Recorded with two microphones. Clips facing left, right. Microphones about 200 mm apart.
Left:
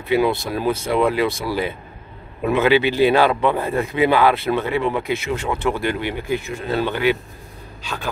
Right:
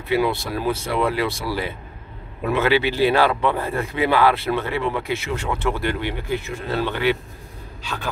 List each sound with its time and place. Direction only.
0.1 s speech: 20° left (ahead or behind)